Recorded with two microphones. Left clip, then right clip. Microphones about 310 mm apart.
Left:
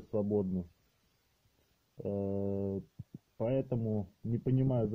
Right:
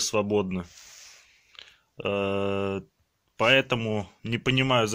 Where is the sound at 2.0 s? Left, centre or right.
Right.